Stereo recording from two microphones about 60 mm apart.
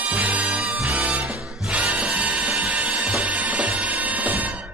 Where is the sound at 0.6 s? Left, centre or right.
Centre.